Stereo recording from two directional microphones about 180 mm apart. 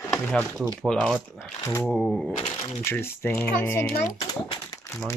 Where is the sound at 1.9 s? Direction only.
5° left (ahead or behind).